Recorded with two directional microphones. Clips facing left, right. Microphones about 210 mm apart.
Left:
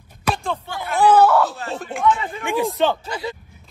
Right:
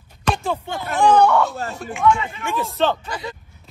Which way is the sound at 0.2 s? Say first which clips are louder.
Right 1 dB; centre (ahead or behind).